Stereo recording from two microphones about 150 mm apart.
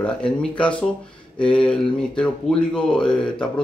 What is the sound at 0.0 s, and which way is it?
Speech, 5° left (ahead or behind).